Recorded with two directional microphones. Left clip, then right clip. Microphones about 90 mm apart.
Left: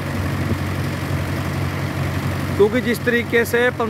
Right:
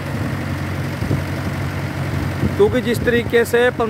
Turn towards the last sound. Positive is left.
turn(degrees=-25)  # may be behind; listen again after turning